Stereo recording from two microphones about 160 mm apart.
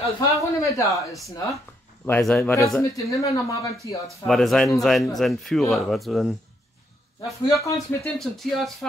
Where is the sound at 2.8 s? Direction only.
20° left (ahead or behind).